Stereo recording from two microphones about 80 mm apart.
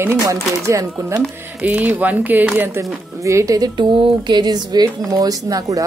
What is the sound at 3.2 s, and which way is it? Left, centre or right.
Speech, right.